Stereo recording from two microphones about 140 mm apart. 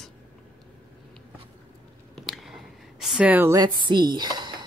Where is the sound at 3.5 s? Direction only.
30° right (ahead or behind).